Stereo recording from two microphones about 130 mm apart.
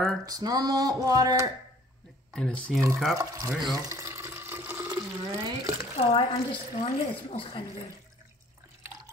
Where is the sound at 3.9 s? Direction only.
20° right (ahead or behind).